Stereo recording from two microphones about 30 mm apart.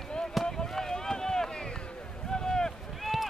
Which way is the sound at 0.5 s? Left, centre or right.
Centre.